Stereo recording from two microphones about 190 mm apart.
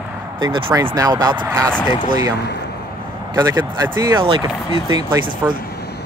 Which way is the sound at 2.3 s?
60° left (ahead or behind).